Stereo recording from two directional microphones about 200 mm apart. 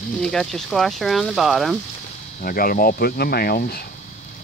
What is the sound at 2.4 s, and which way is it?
Speech, 45° left (ahead or behind).